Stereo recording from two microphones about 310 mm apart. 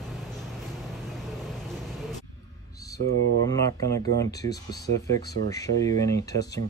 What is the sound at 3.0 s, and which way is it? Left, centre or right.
Speech, right.